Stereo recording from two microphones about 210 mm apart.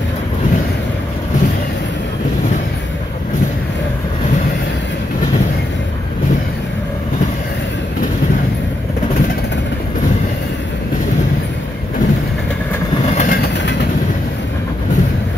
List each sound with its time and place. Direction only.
13.1 s train: 40° left (ahead or behind)